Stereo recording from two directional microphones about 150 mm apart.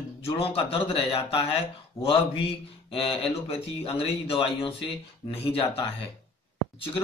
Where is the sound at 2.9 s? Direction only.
35° left (ahead or behind).